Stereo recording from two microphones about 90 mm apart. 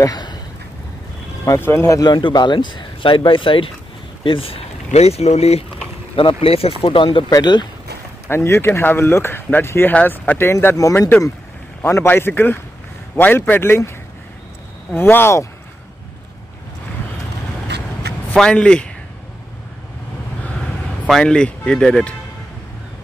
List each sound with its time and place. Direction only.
0.0 s a sound: 50° left (ahead or behind)
1.4 s speech: 35° left (ahead or behind)
2.0 s speech: 60° left (ahead or behind); by 4.6 s 80° left
6.1 s speech: 85° left
7.2 s speech: 50° left (ahead or behind)
8.3 s speech: 30° left (ahead or behind)
15.0 s speech: 25° left (ahead or behind)
18.3 s speech: 10° left (ahead or behind)
21.1 s speech: 10° left (ahead or behind)